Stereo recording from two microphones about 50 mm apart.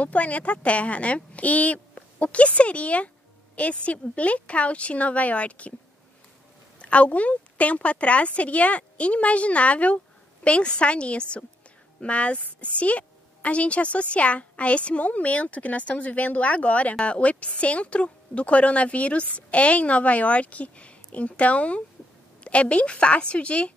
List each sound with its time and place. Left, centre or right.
0.0 s a woman's voice: left
6.8 s a woman's voice: left